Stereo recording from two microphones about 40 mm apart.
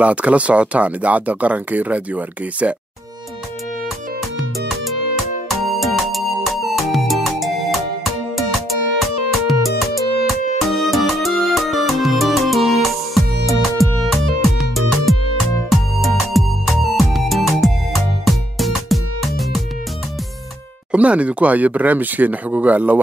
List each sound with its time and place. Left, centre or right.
0.0 s speech: right
5.8 s music: centre
20.9 s speech: right